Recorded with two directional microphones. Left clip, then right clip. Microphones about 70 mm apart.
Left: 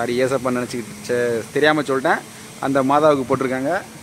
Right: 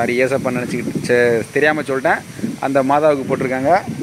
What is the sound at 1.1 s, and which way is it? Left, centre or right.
Speech, right.